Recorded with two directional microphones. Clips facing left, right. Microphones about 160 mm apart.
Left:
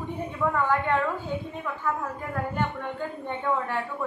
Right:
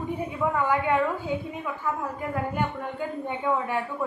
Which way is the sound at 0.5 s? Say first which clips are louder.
Right 1 dB; 10° right (ahead or behind).